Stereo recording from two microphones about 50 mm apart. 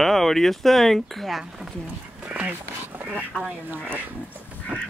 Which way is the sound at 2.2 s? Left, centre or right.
Right.